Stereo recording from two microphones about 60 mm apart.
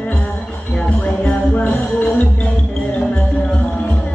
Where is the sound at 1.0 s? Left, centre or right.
Left.